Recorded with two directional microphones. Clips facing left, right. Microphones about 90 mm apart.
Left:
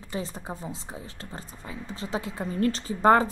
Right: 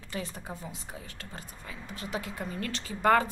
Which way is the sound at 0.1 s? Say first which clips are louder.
Left 4 dB; 25° left (ahead or behind).